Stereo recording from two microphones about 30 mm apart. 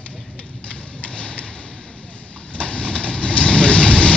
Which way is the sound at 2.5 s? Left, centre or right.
Left.